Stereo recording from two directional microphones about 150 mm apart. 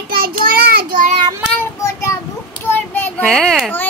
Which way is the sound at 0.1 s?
85° right.